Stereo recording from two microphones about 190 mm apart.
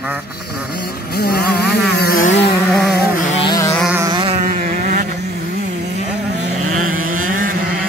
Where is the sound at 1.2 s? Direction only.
55° left (ahead or behind).